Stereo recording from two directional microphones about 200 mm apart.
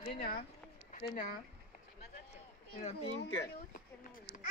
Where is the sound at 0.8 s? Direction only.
40° left (ahead or behind).